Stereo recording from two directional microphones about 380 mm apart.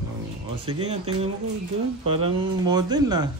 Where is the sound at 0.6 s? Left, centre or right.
Centre.